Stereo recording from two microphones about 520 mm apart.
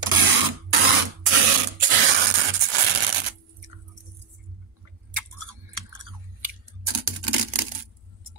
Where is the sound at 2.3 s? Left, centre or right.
Right.